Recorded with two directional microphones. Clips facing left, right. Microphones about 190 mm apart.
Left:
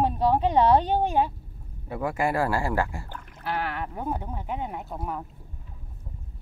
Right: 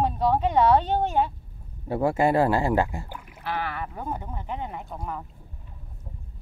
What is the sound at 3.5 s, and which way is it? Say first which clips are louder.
Speech: left 1 dB; 10° left (ahead or behind).